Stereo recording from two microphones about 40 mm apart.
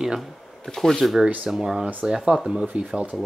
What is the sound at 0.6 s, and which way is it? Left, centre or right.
Speech, centre.